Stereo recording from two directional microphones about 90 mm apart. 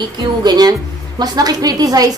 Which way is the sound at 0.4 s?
50° right (ahead or behind).